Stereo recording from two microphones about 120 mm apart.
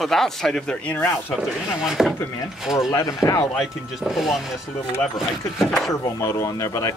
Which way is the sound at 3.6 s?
Centre (ahead or behind).